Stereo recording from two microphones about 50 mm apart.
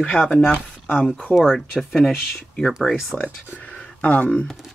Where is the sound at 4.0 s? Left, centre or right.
Left.